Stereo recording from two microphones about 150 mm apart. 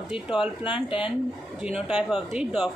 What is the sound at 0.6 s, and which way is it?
Speech, 35° left (ahead or behind).